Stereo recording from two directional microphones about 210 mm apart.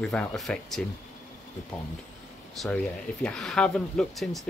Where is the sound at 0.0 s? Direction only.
Centre (ahead or behind).